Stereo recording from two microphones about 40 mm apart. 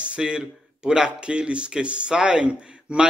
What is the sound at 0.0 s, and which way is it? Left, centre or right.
Speech, right.